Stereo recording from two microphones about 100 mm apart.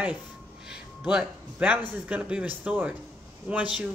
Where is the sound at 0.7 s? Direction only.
10° right (ahead or behind).